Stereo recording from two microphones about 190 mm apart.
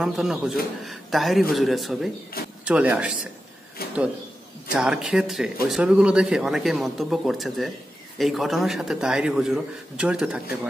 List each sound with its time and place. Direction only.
0.0 s speech: 5° right (ahead or behind)
3.8 s a sound: 55° left (ahead or behind)
4.7 s speech: 5° right (ahead or behind)